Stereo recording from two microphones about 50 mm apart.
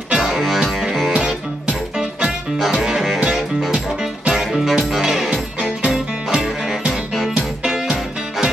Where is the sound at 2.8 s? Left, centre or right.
Centre.